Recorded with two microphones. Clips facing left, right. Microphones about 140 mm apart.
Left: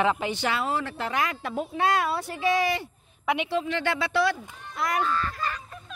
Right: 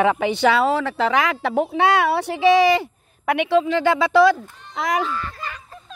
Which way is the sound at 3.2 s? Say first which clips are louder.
Right 8 dB; 65° right (ahead or behind).